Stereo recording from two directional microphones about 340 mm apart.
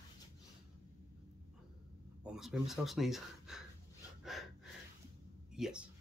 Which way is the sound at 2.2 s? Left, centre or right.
Centre.